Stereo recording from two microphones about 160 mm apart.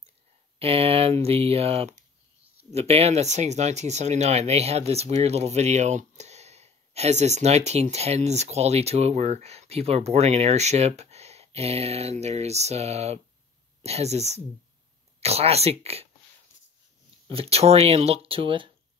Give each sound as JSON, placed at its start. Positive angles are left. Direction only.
{"t": 0.6, "sound": "speech", "side_deg": -35}
{"t": 17.3, "sound": "speech", "side_deg": -35}